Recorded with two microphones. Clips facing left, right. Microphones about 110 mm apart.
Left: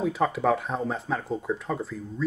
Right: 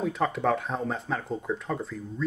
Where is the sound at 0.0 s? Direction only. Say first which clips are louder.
Left 2 dB; 5° left (ahead or behind).